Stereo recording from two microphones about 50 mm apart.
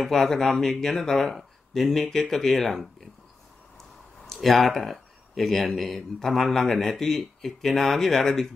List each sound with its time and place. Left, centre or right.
0.0 s speech: centre
4.3 s speech: centre